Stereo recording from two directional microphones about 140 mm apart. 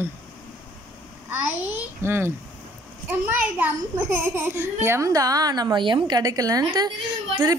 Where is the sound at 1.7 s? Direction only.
15° right (ahead or behind).